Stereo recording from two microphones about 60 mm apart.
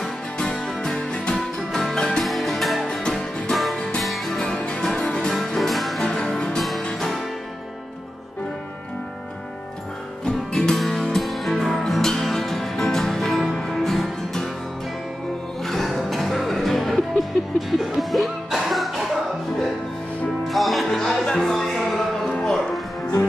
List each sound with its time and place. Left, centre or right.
0.4 s music: centre
1.7 s music: centre
4.0 s music: centre
5.3 s music: centre
10.2 s music: centre
15.6 s music: centre
20.4 s music: centre
22.3 s cattle: centre